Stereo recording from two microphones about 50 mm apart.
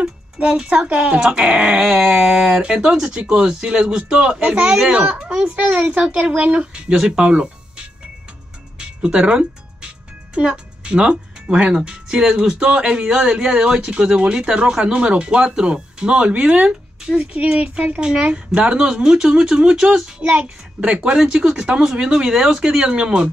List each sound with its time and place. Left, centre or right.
0.0 s speech: centre
20.1 s speech: right